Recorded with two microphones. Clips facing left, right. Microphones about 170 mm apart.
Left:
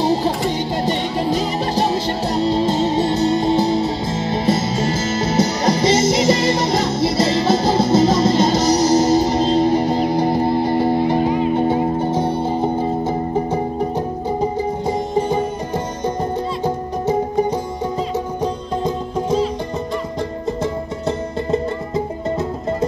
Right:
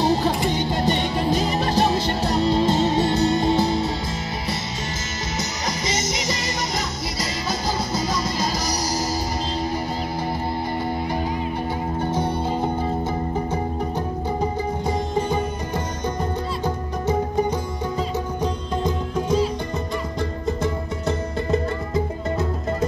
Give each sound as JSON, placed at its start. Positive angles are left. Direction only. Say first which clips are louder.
{"t": 0.0, "sound": "music", "louder": "left 2 dB", "side_deg": 30}
{"t": 21.5, "sound": "music", "louder": "left 2 dB", "side_deg": 25}